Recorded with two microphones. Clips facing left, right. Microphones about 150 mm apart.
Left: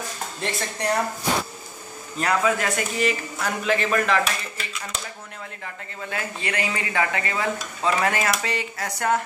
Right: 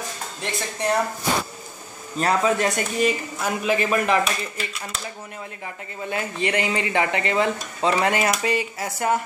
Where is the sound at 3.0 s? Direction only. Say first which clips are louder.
Right 4 dB; 15° right (ahead or behind).